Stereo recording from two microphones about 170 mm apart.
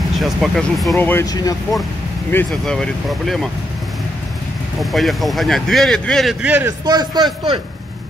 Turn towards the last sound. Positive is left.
turn(degrees=-25)  # may be behind; listen again after turning